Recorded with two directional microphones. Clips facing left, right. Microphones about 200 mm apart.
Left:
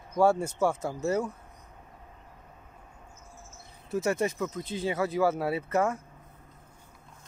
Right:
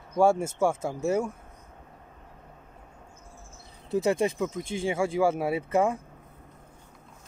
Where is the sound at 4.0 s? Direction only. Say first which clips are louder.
Right 3 dB; 15° right (ahead or behind).